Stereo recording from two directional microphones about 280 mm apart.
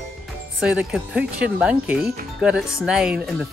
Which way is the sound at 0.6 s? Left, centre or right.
Centre.